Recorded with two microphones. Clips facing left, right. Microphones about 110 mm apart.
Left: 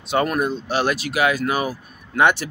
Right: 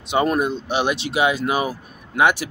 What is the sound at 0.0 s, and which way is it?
Speech, 20° right (ahead or behind).